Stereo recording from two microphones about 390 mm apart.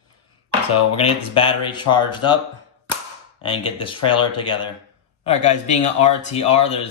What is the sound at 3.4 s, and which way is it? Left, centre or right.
Speech, centre.